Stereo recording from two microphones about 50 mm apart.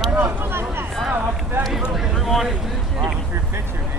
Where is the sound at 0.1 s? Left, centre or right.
Right.